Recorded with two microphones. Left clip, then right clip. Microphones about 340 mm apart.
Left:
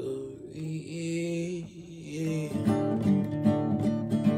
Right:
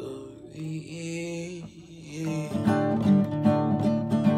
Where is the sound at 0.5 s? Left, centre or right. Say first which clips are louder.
Right 3 dB; centre.